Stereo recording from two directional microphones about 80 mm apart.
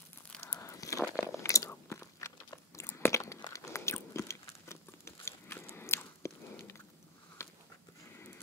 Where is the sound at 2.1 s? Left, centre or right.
Left.